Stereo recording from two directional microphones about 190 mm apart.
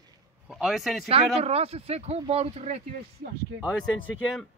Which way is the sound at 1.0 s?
30° right (ahead or behind).